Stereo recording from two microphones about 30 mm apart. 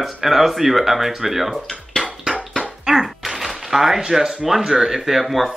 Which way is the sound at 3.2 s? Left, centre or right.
Centre.